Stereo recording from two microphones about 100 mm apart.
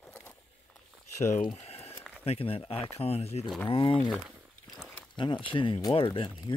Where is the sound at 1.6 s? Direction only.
90° left.